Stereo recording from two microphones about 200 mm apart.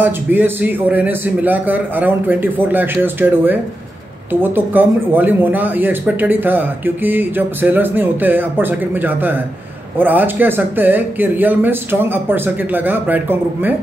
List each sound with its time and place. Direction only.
0.0 s speech: 10° right (ahead or behind)